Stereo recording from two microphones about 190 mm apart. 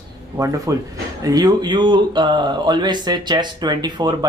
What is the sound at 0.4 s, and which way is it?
Speech, 20° right (ahead or behind).